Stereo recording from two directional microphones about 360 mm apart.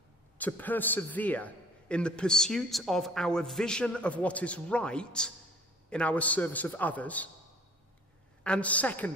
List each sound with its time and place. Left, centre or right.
0.4 s a man's voice: centre
8.5 s a man's voice: centre